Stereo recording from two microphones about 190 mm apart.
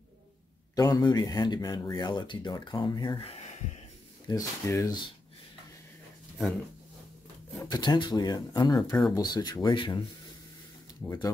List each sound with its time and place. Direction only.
0.7 s speech: 20° left (ahead or behind)
4.3 s speech: 15° left (ahead or behind)
7.7 s speech: 20° left (ahead or behind)
8.7 s speech: 5° left (ahead or behind)
9.1 s speech: 20° left (ahead or behind)